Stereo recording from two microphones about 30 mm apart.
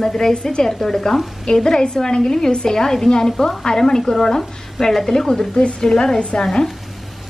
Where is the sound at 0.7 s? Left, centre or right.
Centre.